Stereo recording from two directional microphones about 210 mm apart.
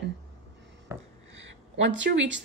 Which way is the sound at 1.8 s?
60° right (ahead or behind).